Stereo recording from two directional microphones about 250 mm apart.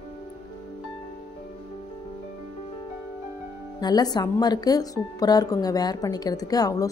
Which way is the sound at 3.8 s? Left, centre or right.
Centre.